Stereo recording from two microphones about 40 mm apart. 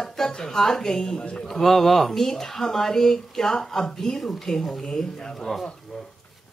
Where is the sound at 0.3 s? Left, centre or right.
Centre.